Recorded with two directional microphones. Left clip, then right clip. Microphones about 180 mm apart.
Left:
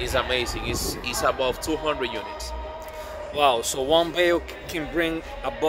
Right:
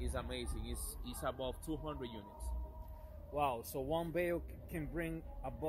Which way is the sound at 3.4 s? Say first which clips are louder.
Left 17 dB; centre (ahead or behind).